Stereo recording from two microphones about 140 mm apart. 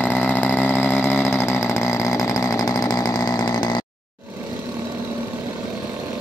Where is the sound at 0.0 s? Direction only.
15° left (ahead or behind); by 3.8 s 30° left (ahead or behind).